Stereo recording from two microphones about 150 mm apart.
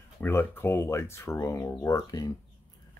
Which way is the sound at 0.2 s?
15° left (ahead or behind).